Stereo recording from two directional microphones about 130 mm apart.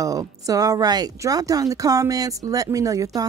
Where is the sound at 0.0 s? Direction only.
25° right (ahead or behind).